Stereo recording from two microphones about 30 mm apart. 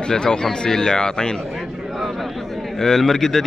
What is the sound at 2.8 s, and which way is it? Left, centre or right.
Speech, centre.